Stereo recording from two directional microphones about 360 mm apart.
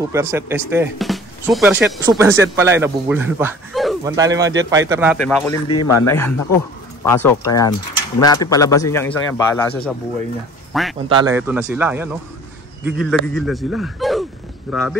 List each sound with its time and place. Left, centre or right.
0.0 s a man's voice: centre
5.7 s speech: left
6.0 s a man's voice: centre
10.7 s speech: centre
11.1 s a man's voice: centre